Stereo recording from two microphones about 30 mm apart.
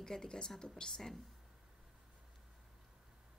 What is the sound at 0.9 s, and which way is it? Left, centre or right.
Speech, centre.